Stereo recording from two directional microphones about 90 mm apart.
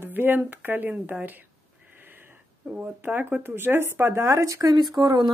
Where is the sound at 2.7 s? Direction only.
15° right (ahead or behind).